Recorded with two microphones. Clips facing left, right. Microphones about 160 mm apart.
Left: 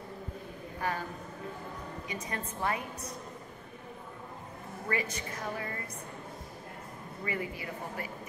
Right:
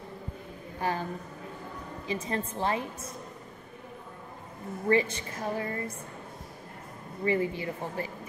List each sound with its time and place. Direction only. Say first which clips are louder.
0.7 s a man's voice: right 4 dB; 30° right (ahead or behind)
2.0 s a woman's voice: right 8 dB; 30° right (ahead or behind)
4.8 s a woman's voice: right 9 dB; 30° right (ahead or behind)
7.2 s a woman's voice: right 9 dB; 30° right (ahead or behind)